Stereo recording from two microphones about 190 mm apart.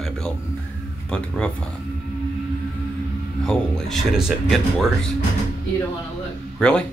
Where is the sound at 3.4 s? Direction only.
5° left (ahead or behind).